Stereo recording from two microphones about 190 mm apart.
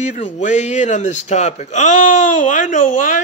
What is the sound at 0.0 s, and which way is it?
A man's voice, 40° left (ahead or behind).